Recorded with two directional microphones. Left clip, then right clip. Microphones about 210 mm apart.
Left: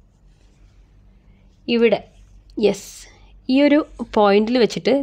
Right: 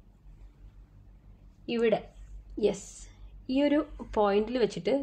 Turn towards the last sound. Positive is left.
turn(degrees=50)  # may be behind; listen again after turning